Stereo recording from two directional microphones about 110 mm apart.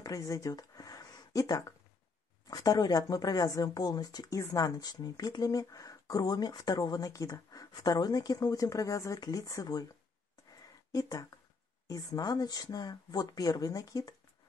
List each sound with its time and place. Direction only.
0.0 s a sound: 35° left (ahead or behind)
2.4 s speech: 35° left (ahead or behind)
10.9 s speech: 35° left (ahead or behind)